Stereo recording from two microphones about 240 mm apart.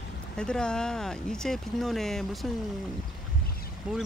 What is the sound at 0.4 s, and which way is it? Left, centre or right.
Speech, centre.